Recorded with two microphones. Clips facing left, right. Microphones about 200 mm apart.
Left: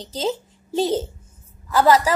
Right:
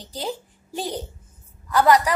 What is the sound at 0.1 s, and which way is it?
A child's voice, 20° left (ahead or behind).